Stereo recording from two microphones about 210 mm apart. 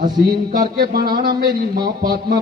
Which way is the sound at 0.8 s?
45° right (ahead or behind).